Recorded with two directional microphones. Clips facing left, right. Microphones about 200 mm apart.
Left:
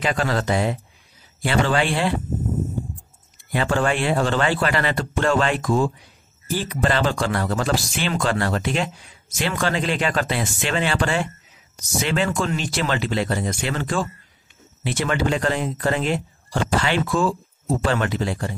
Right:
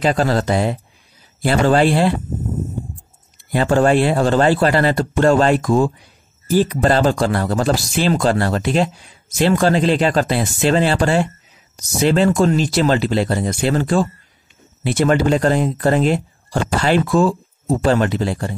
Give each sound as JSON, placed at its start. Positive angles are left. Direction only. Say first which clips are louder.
{"t": 0.0, "sound": "speech", "louder": "right 6 dB", "side_deg": -35}
{"t": 3.5, "sound": "speech", "louder": "right 7 dB", "side_deg": -40}